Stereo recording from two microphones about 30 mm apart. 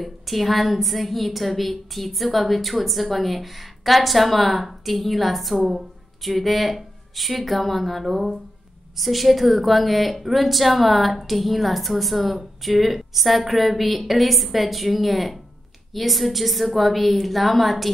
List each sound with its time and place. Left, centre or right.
0.0 s a woman's voice: centre